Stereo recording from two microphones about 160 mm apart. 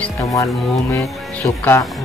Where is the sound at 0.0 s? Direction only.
20° left (ahead or behind).